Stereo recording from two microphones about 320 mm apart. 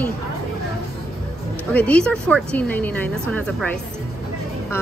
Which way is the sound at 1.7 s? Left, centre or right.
Centre.